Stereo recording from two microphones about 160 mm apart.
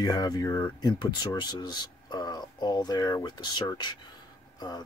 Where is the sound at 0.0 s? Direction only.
25° left (ahead or behind).